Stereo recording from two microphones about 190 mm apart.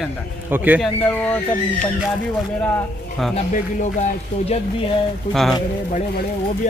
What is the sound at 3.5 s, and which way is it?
Speech, 40° left (ahead or behind).